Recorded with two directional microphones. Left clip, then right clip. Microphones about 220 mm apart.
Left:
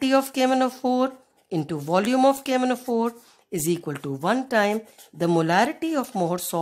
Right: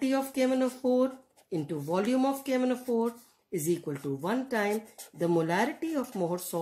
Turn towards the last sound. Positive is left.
turn(degrees=50)  # may be behind; listen again after turning